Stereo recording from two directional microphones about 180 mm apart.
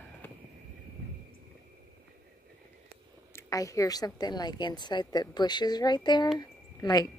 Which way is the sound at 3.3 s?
20° left (ahead or behind).